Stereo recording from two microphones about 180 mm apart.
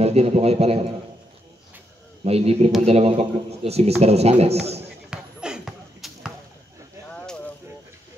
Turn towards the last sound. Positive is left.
turn(degrees=5)  # may be behind; listen again after turning